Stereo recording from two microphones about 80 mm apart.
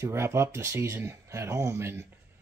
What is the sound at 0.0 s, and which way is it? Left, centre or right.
Speech, right.